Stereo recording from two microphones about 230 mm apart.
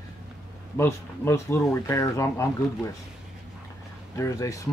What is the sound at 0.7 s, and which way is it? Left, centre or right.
Speech, centre.